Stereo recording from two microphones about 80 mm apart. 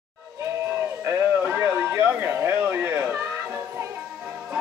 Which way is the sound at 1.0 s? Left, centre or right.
Right.